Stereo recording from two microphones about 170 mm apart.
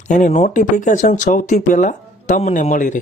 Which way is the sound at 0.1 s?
45° left (ahead or behind).